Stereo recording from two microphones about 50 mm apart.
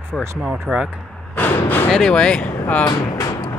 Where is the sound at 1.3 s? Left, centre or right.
Left.